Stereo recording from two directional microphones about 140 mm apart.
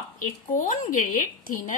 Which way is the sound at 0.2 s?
70° left (ahead or behind).